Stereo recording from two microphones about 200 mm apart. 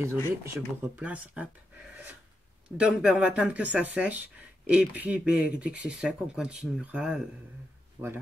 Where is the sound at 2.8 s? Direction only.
5° right (ahead or behind).